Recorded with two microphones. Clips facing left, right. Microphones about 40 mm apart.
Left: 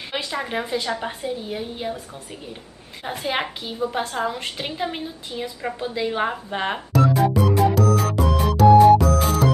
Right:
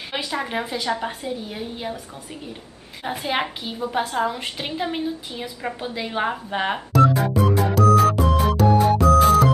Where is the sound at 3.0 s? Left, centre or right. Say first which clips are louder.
Right 1 dB; centre.